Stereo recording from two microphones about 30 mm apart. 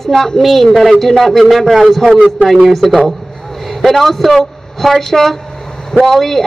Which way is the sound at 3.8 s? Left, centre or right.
Centre.